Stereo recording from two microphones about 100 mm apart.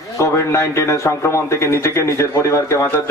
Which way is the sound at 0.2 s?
30° left (ahead or behind).